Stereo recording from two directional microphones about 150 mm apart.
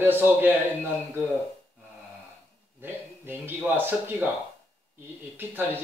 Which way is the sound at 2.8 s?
15° right (ahead or behind).